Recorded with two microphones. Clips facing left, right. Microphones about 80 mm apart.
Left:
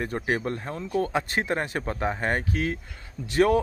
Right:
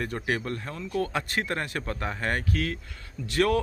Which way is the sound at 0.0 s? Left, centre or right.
Left.